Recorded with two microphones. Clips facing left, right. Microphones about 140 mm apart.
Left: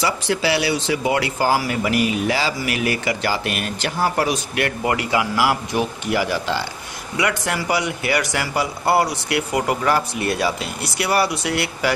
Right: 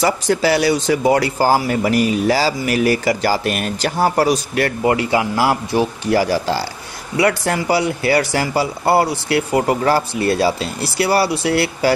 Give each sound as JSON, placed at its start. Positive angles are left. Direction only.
{"t": 0.0, "sound": "speech", "side_deg": -45}
{"t": 4.8, "sound": "speech", "side_deg": -25}